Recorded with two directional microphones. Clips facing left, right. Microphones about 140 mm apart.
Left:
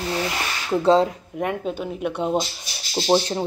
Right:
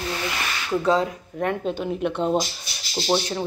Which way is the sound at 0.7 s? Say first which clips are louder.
Left 4 dB; 30° left (ahead or behind).